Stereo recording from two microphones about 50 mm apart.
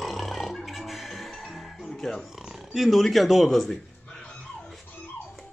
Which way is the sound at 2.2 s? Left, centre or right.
Centre.